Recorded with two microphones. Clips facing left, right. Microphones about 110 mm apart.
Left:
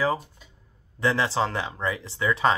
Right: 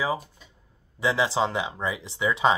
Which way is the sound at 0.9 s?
15° right (ahead or behind).